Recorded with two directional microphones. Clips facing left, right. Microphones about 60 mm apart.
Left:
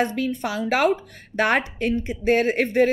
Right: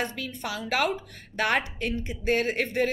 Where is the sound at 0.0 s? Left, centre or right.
Left.